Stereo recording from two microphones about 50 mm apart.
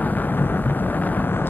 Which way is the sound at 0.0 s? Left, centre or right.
Left.